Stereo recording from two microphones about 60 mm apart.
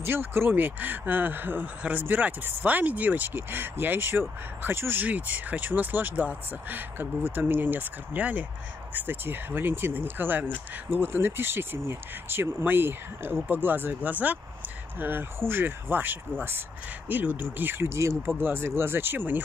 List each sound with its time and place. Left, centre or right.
0.0 s speech: right
5.0 s speech: right
18.4 s speech: right